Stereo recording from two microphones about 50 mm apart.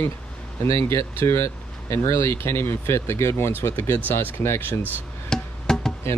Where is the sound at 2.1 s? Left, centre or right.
Left.